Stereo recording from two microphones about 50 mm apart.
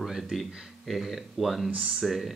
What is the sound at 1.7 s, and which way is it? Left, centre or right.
Speech, centre.